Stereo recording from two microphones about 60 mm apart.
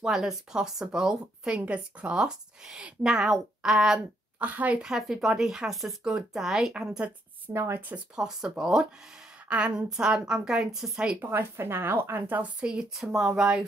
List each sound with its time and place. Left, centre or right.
0.0 s speech: centre
4.4 s a woman's voice: right
4.8 s a woman's voice: centre
7.5 s speech: right
7.9 s a woman's voice: centre
11.1 s a woman's voice: right; by 12.8 s centre
13.0 s a woman's voice: centre